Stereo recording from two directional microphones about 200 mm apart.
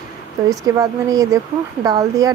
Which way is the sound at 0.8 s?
20° right (ahead or behind).